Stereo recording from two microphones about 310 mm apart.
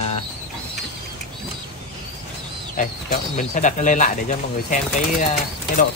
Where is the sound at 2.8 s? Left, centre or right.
Left.